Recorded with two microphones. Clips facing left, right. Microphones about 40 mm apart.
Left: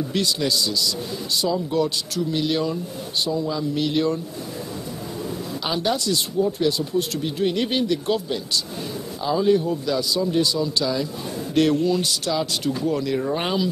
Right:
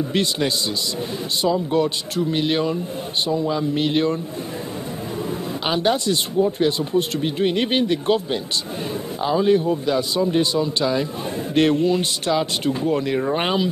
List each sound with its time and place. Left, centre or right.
0.1 s speech: right
5.7 s speech: right